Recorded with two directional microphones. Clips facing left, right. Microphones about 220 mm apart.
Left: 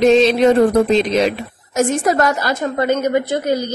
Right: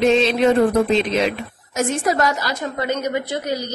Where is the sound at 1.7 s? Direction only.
50° left (ahead or behind).